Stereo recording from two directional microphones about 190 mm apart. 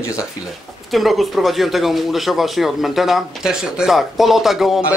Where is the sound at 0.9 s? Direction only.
Centre (ahead or behind).